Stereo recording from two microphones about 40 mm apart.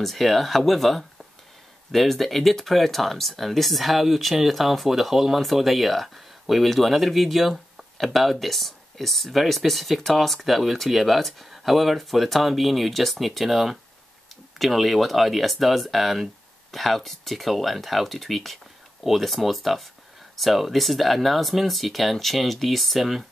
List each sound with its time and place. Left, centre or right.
0.0 s speech: centre